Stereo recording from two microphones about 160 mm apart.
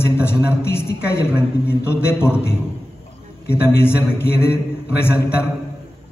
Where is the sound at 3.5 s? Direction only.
15° left (ahead or behind).